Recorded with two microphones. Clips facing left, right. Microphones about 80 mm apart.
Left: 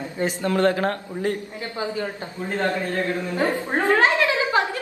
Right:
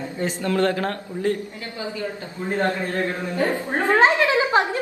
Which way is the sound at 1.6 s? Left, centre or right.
Left.